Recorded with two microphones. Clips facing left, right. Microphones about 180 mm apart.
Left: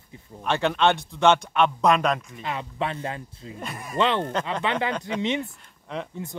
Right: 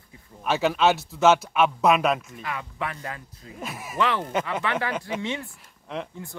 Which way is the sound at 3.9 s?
25° left (ahead or behind).